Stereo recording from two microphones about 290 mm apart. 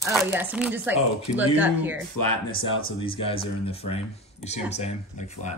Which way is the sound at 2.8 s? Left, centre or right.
Centre.